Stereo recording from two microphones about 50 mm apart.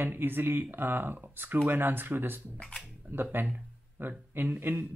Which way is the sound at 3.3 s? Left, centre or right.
Right.